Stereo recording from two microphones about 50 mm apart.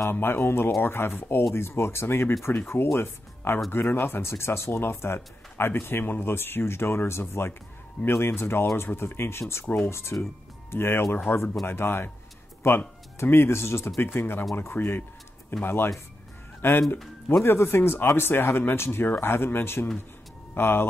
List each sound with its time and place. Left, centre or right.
0.1 s speech: left